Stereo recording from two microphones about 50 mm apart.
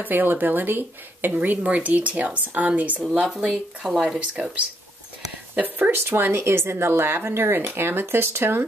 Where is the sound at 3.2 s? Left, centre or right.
Centre.